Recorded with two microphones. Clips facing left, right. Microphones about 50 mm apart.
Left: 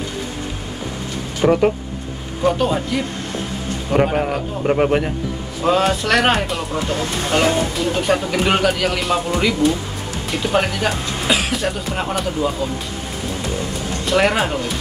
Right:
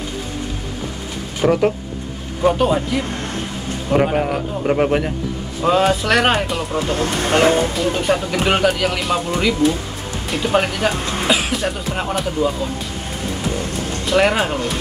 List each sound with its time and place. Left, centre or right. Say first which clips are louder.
1.4 s speech: left 1 dB; centre
2.4 s a man's voice: right 2 dB; centre
7.2 s speech: right 3 dB; right
7.7 s speech: even; centre
14.0 s speech: right 1 dB; centre